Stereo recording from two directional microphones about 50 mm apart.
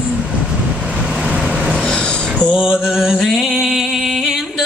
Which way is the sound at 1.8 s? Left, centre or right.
Centre.